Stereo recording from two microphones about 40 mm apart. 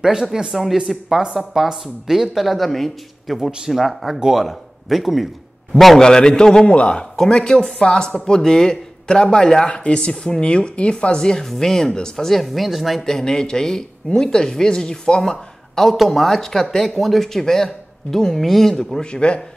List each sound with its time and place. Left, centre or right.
0.0 s speech: centre
0.5 s speech: centre
3.3 s speech: centre
3.7 s speech: centre
5.9 s speech: centre
11.4 s speech: centre
12.3 s speech: centre
13.0 s speech: centre
15.8 s speech: centre
19.0 s speech: left